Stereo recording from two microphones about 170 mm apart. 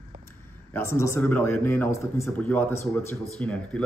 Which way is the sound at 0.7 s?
15° left (ahead or behind).